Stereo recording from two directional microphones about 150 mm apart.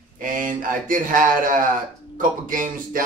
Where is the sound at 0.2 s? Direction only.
65° right (ahead or behind).